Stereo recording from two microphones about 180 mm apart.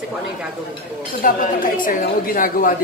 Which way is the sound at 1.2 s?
50° left (ahead or behind).